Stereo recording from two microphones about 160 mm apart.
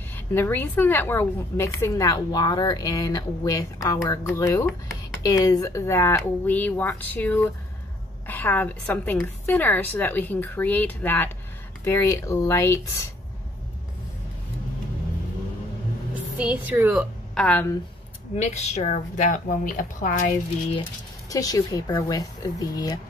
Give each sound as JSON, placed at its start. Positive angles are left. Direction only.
{"t": 0.1, "sound": "a woman's voice", "side_deg": 15}
{"t": 16.3, "sound": "a woman's voice", "side_deg": -10}
{"t": 17.3, "sound": "speech", "side_deg": 10}
{"t": 18.3, "sound": "a woman's voice", "side_deg": 45}
{"t": 21.3, "sound": "a woman's voice", "side_deg": 20}